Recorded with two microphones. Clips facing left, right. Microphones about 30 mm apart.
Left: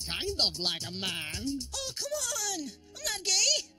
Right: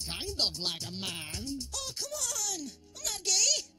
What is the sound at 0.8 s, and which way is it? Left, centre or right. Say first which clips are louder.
Music: left 3 dB; left.